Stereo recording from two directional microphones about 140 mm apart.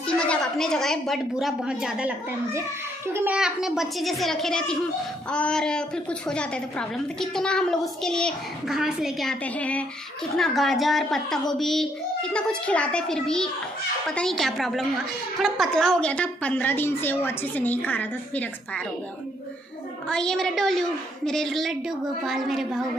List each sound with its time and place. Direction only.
0.0 s a woman's voice: 5° left (ahead or behind)
3.1 s a child's voice: 15° right (ahead or behind)
3.3 s a woman's voice: 5° right (ahead or behind)
20.1 s a woman's voice: 5° left (ahead or behind)